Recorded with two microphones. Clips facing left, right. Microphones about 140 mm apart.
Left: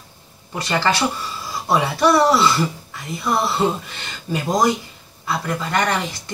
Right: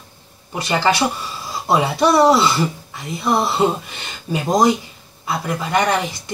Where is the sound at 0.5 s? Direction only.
15° right (ahead or behind).